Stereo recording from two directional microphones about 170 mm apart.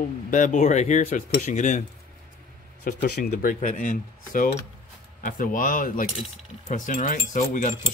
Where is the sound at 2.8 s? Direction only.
70° left (ahead or behind).